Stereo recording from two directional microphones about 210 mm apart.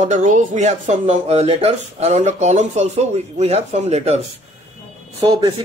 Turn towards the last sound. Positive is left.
turn(degrees=-15)  # may be behind; listen again after turning